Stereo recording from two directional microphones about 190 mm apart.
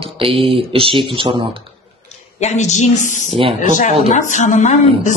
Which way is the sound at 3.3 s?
30° right (ahead or behind).